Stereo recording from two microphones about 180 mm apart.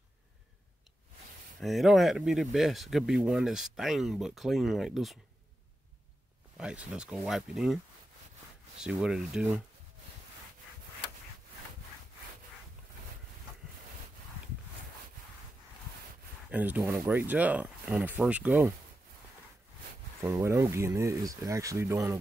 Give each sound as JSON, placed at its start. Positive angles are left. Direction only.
{"t": 1.6, "sound": "speech", "side_deg": 0}
{"t": 6.5, "sound": "speech", "side_deg": -5}
{"t": 16.4, "sound": "speech", "side_deg": -10}
{"t": 20.2, "sound": "speech", "side_deg": -15}